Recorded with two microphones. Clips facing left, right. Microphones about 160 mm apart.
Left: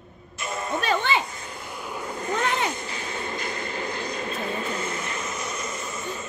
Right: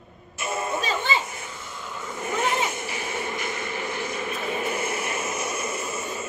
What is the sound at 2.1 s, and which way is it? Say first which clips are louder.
Vehicle: right 1 dB; 20° right (ahead or behind).